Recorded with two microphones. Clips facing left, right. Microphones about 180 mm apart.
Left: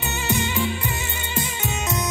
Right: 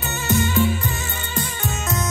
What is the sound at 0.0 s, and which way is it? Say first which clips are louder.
Music: right 3 dB; 15° left (ahead or behind).